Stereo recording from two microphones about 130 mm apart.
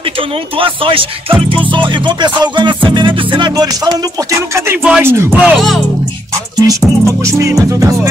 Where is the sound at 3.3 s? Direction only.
35° right (ahead or behind).